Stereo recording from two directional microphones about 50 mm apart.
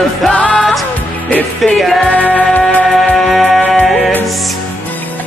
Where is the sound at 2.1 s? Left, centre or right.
Left.